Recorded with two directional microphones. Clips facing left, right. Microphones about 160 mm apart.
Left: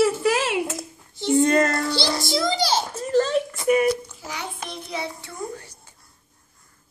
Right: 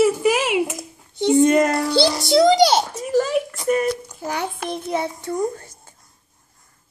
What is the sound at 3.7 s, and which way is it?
Speech, 10° left (ahead or behind).